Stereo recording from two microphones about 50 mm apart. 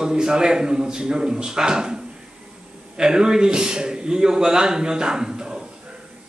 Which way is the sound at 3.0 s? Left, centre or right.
Centre.